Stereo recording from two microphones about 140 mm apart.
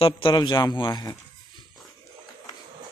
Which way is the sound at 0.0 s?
35° left (ahead or behind).